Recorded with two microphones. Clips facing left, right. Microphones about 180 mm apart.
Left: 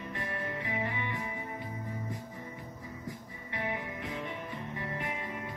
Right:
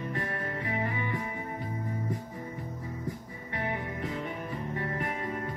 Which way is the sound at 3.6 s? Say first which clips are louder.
Right 3 dB; 40° right (ahead or behind).